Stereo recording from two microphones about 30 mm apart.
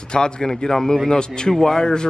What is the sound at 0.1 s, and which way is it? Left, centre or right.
Speech, left.